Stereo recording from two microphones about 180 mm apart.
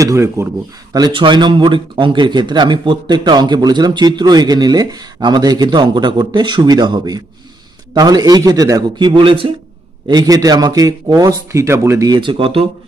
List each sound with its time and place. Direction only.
0.0 s a man's voice: 15° right (ahead or behind); by 12.6 s 30° right (ahead or behind)